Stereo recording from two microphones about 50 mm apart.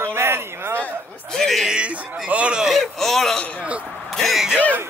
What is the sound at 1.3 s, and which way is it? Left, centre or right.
Speech, centre.